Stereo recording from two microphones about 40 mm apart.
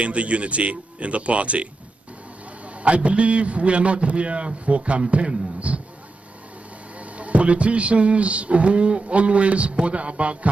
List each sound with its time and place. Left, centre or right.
0.0 s speech: right
2.8 s speech: right
7.2 s speech: right